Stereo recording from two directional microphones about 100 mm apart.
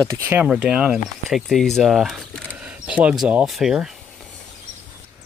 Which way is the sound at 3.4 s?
5° right (ahead or behind).